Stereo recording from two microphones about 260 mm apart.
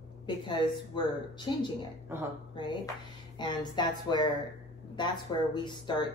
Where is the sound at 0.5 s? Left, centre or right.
Centre.